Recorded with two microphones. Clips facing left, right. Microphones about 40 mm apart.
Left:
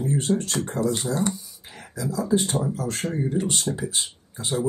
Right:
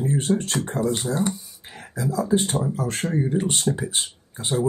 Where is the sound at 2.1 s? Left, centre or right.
Right.